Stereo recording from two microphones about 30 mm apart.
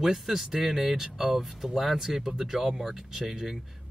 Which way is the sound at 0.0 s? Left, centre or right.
Centre.